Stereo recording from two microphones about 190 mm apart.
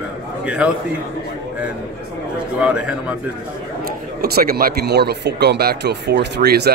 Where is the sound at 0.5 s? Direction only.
5° right (ahead or behind).